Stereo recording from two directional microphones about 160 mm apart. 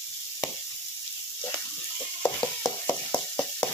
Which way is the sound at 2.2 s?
15° left (ahead or behind).